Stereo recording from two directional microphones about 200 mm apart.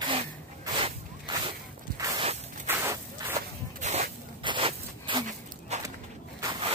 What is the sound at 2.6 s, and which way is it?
Walk, 10° right (ahead or behind).